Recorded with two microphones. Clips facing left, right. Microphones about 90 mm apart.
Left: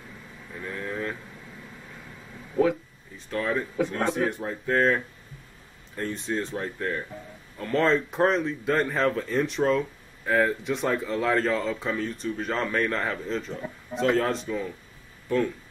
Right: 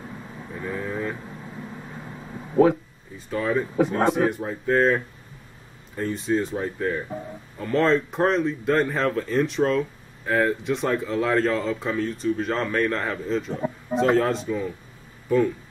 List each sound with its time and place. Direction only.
0.5 s vehicle: 15° right (ahead or behind)
1.9 s a sound: 35° right (ahead or behind)
3.2 s speech: 5° right (ahead or behind)